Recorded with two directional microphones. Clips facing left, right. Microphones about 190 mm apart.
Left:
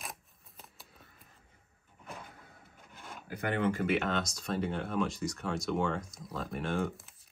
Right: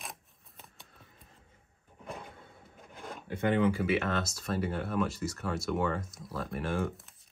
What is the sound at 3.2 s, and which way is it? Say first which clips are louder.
Speech: right 5 dB; 25° right (ahead or behind).